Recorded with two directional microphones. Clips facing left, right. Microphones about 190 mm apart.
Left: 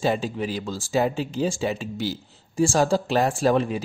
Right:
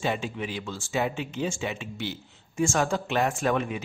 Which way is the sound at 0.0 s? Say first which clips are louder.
Left 5 dB; 35° left (ahead or behind).